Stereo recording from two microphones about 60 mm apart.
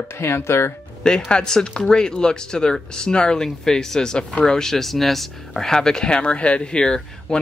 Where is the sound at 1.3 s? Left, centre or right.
Centre.